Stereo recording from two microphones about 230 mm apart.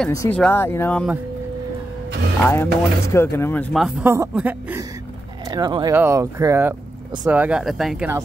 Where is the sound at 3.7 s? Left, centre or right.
Centre.